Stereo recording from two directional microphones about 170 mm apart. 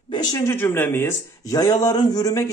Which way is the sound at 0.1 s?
20° left (ahead or behind).